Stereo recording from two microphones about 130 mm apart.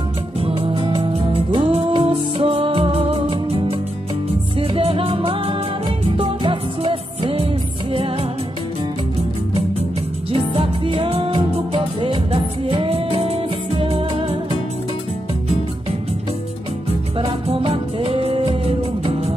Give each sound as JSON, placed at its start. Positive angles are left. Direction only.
{"t": 0.4, "sound": "music", "side_deg": -45}
{"t": 10.5, "sound": "music", "side_deg": -45}
{"t": 17.2, "sound": "music", "side_deg": -45}